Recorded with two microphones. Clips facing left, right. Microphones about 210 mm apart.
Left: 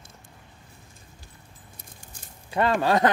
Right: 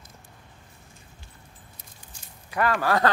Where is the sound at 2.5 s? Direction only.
25° left (ahead or behind).